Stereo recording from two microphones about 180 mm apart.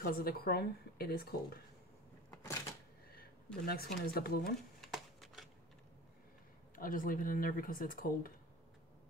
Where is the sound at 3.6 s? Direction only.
60° left (ahead or behind).